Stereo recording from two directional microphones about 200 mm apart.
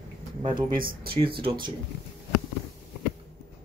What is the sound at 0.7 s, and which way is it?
Speech, 50° right (ahead or behind).